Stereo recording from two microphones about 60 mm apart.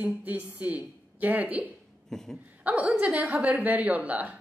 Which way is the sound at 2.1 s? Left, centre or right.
Centre.